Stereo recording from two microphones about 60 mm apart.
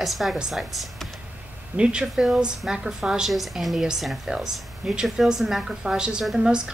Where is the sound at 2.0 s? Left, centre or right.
Centre.